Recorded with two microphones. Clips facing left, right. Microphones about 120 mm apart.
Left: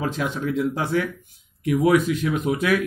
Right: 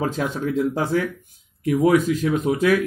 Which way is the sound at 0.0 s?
40° right (ahead or behind).